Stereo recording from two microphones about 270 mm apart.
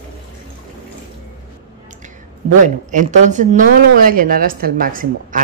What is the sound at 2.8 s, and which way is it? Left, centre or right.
A woman's voice, right.